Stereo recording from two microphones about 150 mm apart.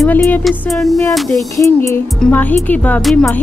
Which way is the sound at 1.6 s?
20° left (ahead or behind).